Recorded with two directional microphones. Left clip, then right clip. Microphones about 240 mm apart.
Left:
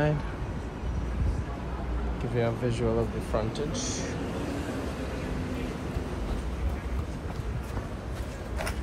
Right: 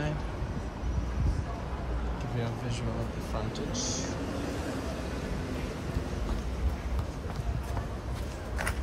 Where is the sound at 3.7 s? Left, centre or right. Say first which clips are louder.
Left 1 dB; right.